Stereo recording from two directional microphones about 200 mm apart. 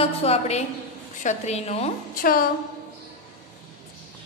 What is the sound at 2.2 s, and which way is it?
Speech, 45° left (ahead or behind).